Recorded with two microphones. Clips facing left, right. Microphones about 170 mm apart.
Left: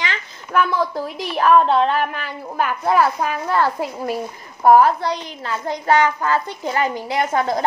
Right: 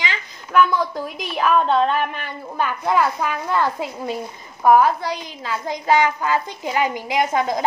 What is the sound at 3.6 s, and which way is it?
A woman's voice, 20° right (ahead or behind).